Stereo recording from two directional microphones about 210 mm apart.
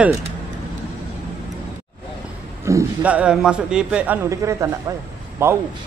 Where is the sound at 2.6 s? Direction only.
15° right (ahead or behind).